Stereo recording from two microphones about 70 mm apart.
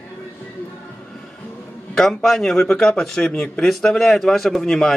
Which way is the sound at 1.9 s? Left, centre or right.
Centre.